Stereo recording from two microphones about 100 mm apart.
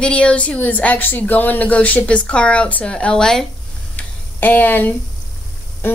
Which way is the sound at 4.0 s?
15° left (ahead or behind).